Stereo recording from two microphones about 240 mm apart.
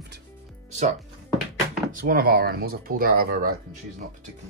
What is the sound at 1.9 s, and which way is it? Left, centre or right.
Speech, right.